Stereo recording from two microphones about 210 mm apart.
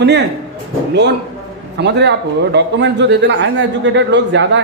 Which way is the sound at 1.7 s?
55° right (ahead or behind).